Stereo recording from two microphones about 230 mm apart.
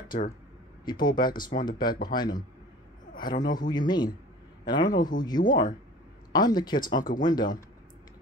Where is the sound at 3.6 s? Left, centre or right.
Centre.